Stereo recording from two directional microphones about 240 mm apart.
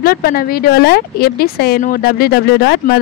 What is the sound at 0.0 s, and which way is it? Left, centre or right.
A woman's voice, left.